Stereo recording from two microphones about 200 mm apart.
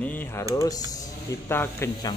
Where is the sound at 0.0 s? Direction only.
10° left (ahead or behind).